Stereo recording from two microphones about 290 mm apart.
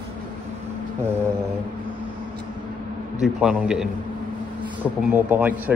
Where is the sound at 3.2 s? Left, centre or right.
Centre.